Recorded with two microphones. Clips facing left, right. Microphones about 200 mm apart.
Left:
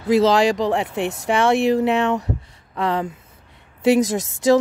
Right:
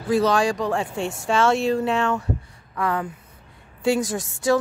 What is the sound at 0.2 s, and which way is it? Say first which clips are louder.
Speech: left 4 dB; 20° left (ahead or behind).